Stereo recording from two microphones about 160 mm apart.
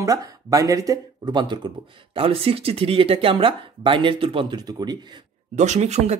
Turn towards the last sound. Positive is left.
turn(degrees=-45)  # may be behind; listen again after turning